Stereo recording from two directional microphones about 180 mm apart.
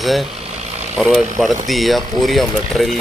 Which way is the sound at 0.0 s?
Centre (ahead or behind).